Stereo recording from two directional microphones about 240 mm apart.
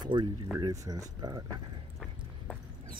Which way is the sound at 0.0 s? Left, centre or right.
Centre.